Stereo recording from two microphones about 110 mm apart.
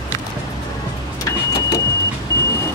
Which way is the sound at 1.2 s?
35° left (ahead or behind).